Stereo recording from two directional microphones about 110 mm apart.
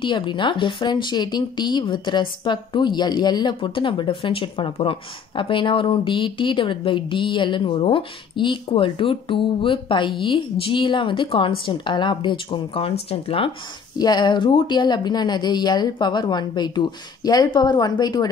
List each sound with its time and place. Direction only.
0.0 s speech: 45° left (ahead or behind)
13.9 s speech: 40° left (ahead or behind)